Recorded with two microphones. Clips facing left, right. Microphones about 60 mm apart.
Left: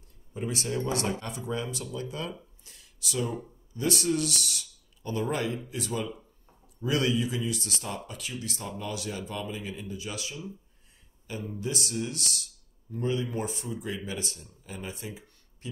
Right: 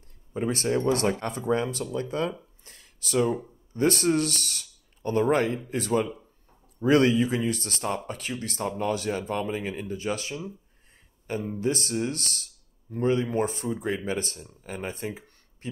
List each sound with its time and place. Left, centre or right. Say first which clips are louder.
0.3 s speech: right 6 dB; right
2.6 s a sound: even; right
3.7 s speech: right 5 dB; right